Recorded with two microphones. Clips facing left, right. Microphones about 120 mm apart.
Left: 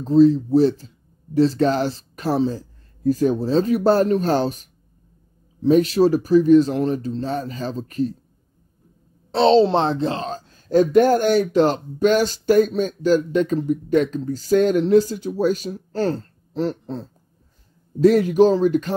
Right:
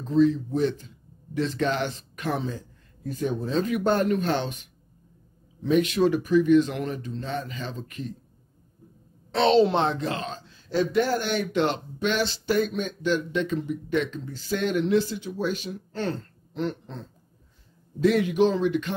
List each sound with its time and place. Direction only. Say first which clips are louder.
0.0 s speech: left 7 dB; 35° left (ahead or behind)
9.3 s speech: left 5 dB; 30° left (ahead or behind)